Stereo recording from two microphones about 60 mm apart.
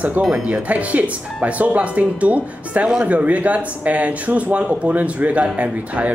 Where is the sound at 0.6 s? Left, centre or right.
Right.